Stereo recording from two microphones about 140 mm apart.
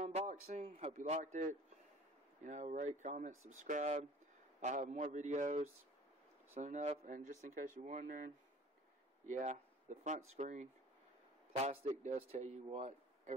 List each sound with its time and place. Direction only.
0.0 s a sound: 50° right (ahead or behind)
1.0 s speech: 55° right (ahead or behind)
9.3 s speech: 60° right (ahead or behind)
11.6 s a man's voice: 45° right (ahead or behind)